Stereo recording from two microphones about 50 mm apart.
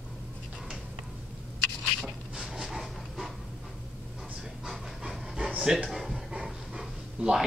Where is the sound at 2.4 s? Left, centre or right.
Centre.